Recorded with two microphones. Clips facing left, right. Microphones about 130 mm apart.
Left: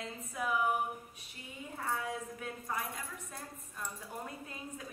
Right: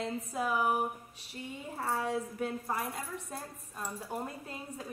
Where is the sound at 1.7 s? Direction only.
30° right (ahead or behind).